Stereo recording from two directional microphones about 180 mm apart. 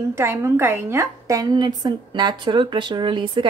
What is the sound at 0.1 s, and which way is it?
A woman's voice, 15° right (ahead or behind).